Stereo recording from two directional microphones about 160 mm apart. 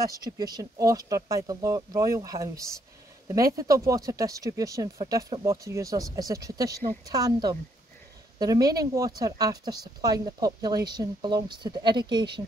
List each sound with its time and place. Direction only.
0.2 s speech: 25° right (ahead or behind)